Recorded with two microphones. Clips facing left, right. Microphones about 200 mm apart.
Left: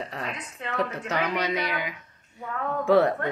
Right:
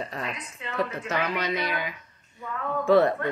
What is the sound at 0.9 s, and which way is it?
A woman's voice, 15° left (ahead or behind).